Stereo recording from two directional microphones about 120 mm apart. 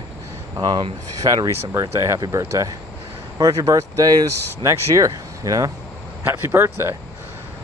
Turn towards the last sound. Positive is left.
turn(degrees=-20)  # may be behind; listen again after turning